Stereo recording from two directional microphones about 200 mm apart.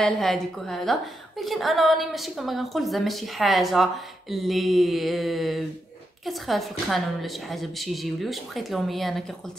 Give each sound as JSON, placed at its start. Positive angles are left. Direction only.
{"t": 0.0, "sound": "a woman's voice", "side_deg": 0}